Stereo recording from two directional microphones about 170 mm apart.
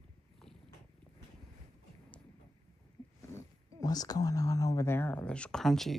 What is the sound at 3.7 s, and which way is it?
Speech, 20° left (ahead or behind).